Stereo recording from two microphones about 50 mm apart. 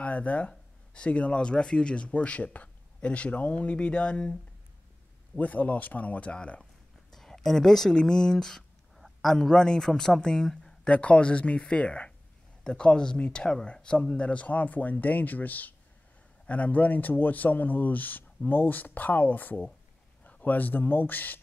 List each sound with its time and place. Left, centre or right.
0.0 s speech: left
5.4 s speech: left
6.6 s speech: centre
10.9 s speech: left